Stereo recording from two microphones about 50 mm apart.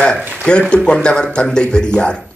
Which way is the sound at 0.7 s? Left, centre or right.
Centre.